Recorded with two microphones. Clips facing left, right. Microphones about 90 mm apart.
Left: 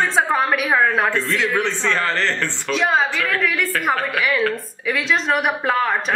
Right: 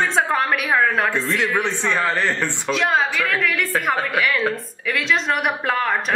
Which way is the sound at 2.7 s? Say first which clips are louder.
Left 2 dB; centre (ahead or behind).